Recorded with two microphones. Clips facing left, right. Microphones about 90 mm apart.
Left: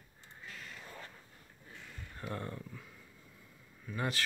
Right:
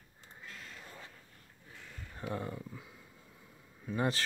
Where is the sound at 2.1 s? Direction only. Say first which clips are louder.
Right 3 dB; 15° right (ahead or behind).